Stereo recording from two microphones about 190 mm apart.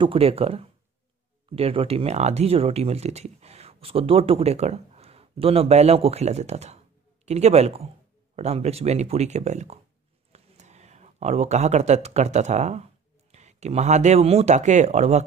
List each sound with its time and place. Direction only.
0.0 s speech: 30° right (ahead or behind)